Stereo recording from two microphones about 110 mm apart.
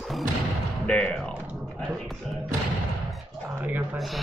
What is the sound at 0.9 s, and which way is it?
Music, 10° left (ahead or behind).